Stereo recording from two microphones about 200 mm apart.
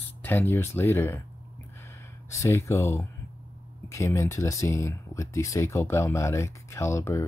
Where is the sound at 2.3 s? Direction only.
15° left (ahead or behind).